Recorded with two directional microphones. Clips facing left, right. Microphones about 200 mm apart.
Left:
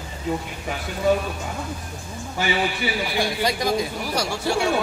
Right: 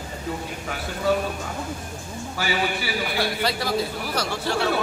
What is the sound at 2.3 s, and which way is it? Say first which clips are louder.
A man's voice: left 2 dB; 20° left (ahead or behind).